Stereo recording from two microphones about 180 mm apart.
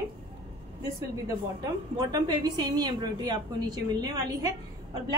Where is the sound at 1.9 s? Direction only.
25° right (ahead or behind).